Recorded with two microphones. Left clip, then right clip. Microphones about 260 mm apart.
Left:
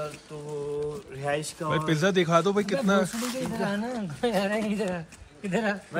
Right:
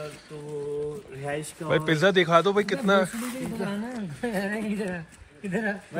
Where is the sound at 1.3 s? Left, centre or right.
Centre.